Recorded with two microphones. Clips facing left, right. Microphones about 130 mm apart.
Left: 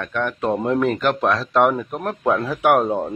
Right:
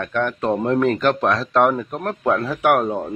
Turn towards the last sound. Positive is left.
turn(degrees=15)  # may be behind; listen again after turning